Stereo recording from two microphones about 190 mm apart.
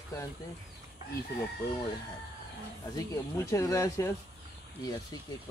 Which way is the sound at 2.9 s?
15° left (ahead or behind).